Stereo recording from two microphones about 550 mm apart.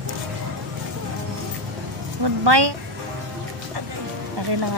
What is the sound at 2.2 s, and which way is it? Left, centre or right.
Speech, right.